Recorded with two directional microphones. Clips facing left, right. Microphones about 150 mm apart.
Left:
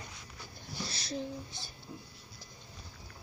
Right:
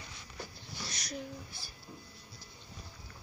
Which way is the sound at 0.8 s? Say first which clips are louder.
Left 3 dB; 30° left (ahead or behind).